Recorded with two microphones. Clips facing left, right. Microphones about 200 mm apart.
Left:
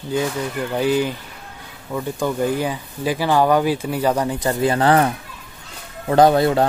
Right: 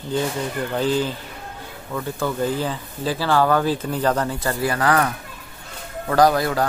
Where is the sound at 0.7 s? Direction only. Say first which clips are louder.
Left 3 dB; 10° left (ahead or behind).